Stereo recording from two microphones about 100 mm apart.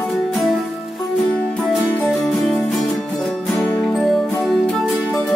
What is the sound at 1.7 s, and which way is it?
Music, centre (ahead or behind).